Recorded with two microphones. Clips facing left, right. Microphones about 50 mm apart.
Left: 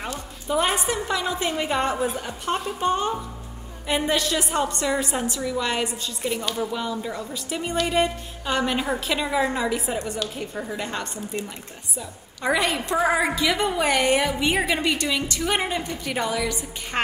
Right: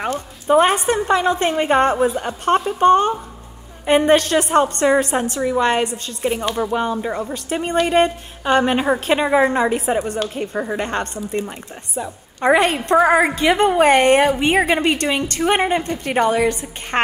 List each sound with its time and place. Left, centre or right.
0.0 s a woman's voice: right